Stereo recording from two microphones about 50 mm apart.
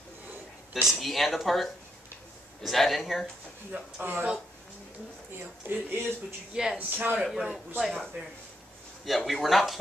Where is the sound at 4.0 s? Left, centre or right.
Right.